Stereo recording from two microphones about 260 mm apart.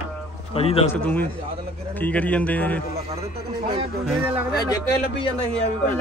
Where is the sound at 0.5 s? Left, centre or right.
Left.